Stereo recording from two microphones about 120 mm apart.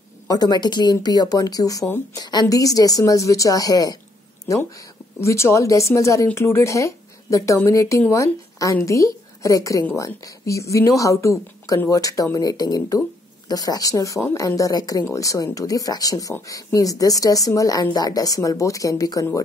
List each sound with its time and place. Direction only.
0.3 s speech: 35° left (ahead or behind)
5.2 s a woman's voice: 25° left (ahead or behind)